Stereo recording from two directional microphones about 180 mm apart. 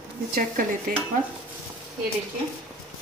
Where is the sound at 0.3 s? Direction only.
55° right (ahead or behind).